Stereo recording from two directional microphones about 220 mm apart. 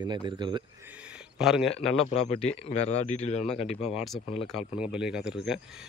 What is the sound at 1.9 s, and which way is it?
Speech, 30° left (ahead or behind).